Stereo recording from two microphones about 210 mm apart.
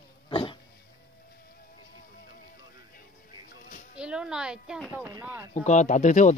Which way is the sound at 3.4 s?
40° left (ahead or behind).